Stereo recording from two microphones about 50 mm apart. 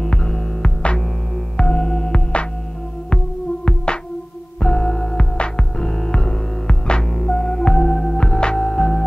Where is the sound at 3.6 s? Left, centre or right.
Centre.